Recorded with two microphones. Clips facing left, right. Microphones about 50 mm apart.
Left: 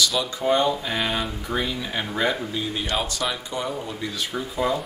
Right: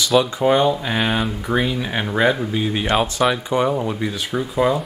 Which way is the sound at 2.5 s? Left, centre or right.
Right.